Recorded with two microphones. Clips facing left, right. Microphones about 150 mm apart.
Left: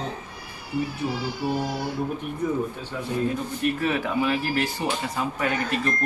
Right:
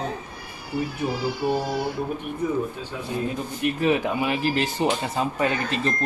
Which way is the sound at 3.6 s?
15° right (ahead or behind).